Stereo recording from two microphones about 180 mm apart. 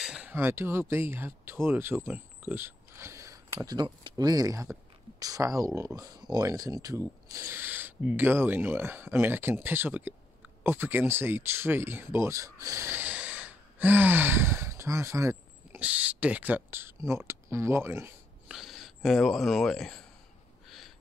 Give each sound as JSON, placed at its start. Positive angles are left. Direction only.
{"t": 0.0, "sound": "speech", "side_deg": -5}
{"t": 18.5, "sound": "speech", "side_deg": 0}
{"t": 20.6, "sound": "a sound", "side_deg": 0}